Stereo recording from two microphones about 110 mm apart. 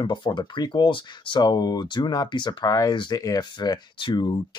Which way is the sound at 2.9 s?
45° left (ahead or behind).